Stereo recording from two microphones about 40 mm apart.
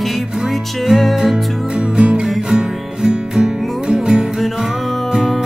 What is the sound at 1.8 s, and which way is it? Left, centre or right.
Music, right.